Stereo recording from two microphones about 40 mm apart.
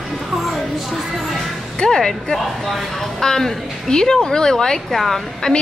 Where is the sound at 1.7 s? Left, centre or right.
Centre.